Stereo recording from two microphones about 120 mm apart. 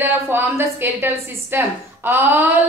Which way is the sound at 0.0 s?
20° right (ahead or behind).